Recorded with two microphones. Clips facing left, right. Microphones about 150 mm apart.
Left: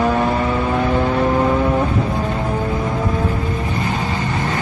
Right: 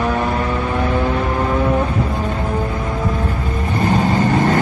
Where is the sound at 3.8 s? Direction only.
45° right (ahead or behind).